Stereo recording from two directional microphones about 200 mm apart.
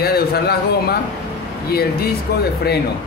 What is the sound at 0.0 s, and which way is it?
Speech, 50° left (ahead or behind).